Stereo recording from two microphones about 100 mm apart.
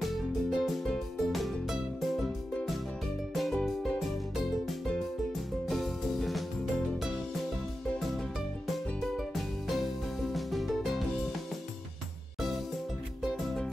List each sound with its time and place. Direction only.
0.0 s music: centre (ahead or behind)
9.1 s music: centre (ahead or behind)
13.2 s music: centre (ahead or behind)